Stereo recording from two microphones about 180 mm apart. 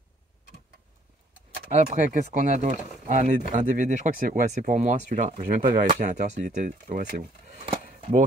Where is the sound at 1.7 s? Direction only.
40° right (ahead or behind).